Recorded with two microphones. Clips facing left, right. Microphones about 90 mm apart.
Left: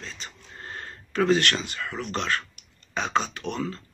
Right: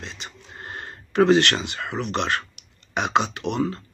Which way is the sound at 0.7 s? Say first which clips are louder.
Right 2 dB; 20° right (ahead or behind).